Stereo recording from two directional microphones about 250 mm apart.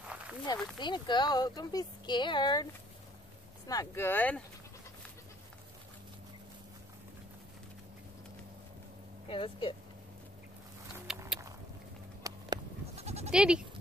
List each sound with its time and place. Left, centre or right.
0.7 s speech: centre
9.3 s speech: left
11.1 s a sound: centre
12.2 s a sound: centre
12.9 s goat: right
13.3 s speech: centre